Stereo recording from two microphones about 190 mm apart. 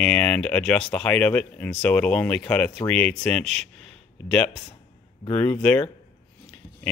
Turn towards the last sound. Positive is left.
turn(degrees=5)  # may be behind; listen again after turning